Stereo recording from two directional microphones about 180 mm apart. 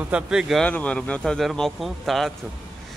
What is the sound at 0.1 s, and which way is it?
Speech, 5° right (ahead or behind).